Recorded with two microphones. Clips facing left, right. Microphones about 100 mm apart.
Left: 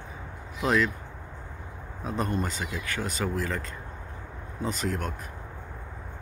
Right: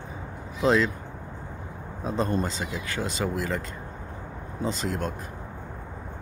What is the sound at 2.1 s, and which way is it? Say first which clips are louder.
Speech: right 3 dB; 25° right (ahead or behind).